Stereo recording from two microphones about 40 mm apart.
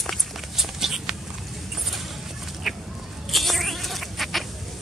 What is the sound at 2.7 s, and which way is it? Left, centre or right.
Chicken, centre.